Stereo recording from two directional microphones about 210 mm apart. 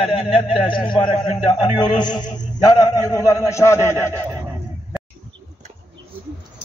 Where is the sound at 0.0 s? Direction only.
25° left (ahead or behind).